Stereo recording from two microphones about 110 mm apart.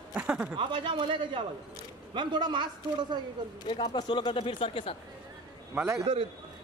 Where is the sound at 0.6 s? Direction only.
45° right (ahead or behind).